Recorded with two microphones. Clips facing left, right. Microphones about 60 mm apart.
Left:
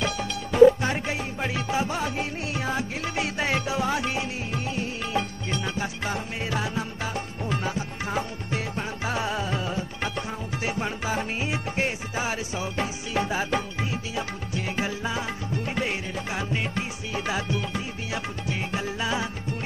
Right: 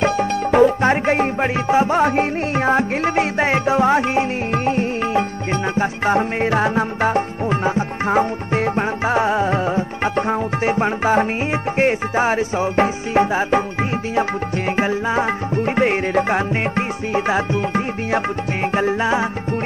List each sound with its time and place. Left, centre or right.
0.0 s music: right
1.7 s music: right
2.0 s music: right
14.8 s music: right